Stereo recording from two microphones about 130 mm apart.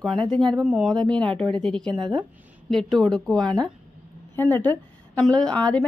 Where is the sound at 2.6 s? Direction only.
Centre (ahead or behind).